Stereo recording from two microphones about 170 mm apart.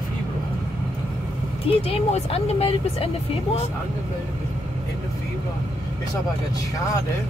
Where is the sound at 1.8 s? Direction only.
35° left (ahead or behind).